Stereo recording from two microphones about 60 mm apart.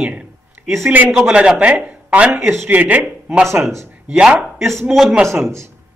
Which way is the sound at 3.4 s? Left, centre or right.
Right.